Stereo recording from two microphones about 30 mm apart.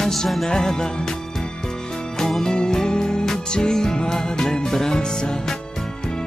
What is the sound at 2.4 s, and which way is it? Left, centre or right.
Music, left.